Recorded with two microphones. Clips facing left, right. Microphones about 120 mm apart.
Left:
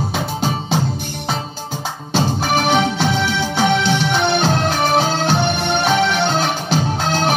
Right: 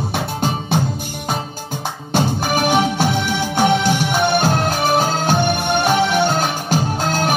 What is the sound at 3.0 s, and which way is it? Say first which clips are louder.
Music: even; 45° right (ahead or behind).